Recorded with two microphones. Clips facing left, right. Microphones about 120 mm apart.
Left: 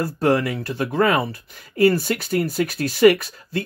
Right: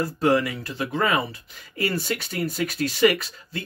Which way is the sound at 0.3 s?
45° left (ahead or behind).